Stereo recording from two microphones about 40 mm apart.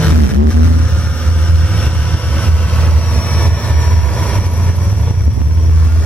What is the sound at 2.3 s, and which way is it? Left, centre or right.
Vehicle, left.